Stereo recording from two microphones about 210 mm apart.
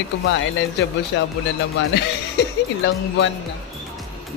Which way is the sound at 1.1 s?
55° left (ahead or behind).